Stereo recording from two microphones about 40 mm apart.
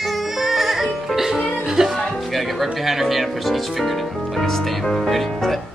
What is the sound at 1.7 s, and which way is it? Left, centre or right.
Music, centre.